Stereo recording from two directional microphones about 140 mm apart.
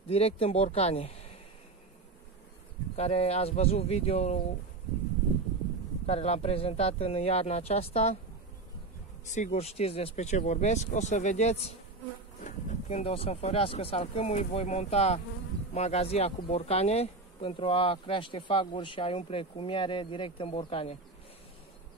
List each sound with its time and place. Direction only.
0.1 s speech: 45° left (ahead or behind)
3.0 s speech: 50° left (ahead or behind)
6.0 s speech: 50° left (ahead or behind)
9.3 s speech: 55° left (ahead or behind)
12.4 s speech: 65° left (ahead or behind); by 21.0 s 40° left (ahead or behind)